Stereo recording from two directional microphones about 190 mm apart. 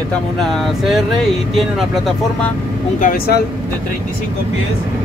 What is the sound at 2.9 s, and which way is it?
Speech, 45° left (ahead or behind).